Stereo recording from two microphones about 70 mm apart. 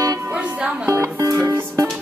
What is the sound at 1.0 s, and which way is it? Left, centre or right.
Music, right.